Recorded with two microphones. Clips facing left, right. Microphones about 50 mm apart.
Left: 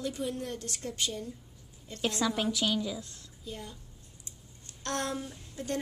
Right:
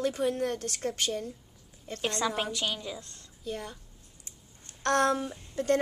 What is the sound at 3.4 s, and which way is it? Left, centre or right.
Speech, right.